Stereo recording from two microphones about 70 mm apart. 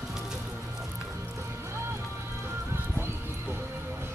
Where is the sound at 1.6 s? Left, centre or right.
Right.